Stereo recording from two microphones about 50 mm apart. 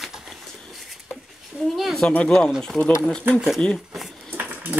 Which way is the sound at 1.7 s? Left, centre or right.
Centre.